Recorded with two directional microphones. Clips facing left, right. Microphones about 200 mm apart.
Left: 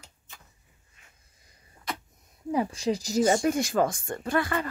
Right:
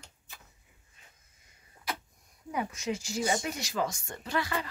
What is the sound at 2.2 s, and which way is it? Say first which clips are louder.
Speech: left 8 dB; 25° left (ahead or behind).